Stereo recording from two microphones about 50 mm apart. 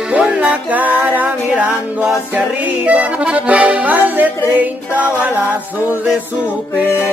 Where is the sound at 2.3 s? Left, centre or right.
Right.